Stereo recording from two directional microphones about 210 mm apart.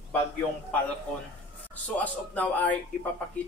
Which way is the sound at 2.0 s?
5° left (ahead or behind).